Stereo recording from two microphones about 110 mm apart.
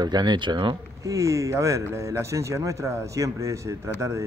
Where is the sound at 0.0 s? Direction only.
40° right (ahead or behind).